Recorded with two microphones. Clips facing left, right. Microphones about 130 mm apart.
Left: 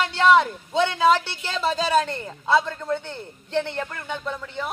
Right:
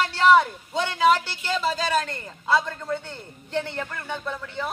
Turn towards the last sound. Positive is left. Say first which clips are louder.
# left 1 dB
turn(degrees=15)  # may be behind; listen again after turning